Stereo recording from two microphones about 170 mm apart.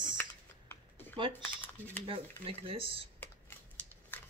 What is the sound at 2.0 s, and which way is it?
Speech, 30° right (ahead or behind).